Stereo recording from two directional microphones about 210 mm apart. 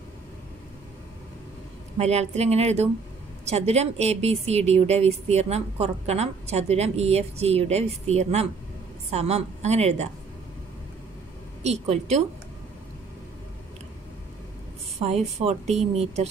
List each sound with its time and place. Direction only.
2.0 s speech: 30° right (ahead or behind)
11.6 s speech: 30° right (ahead or behind)
15.0 s speech: 30° right (ahead or behind)